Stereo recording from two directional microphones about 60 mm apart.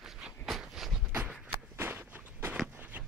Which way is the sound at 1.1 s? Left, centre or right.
Right.